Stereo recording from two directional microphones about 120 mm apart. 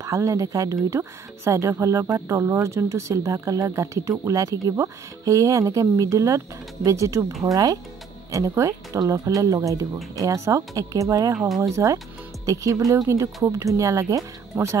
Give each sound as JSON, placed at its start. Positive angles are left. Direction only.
{"t": 0.0, "sound": "speech", "side_deg": -25}